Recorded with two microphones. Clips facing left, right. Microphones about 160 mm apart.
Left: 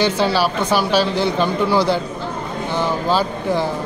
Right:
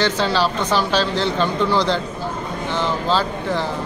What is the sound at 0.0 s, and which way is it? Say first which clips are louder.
Speech: left 2 dB; 10° left (ahead or behind).